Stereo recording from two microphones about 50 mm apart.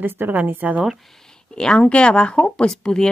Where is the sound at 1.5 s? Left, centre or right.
Centre.